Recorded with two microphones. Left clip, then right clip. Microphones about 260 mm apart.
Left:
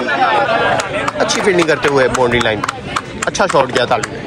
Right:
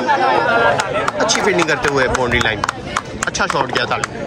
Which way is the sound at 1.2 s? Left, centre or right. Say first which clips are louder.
Left 3 dB; centre.